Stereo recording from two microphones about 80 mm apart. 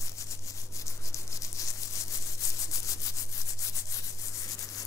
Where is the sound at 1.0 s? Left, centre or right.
Left.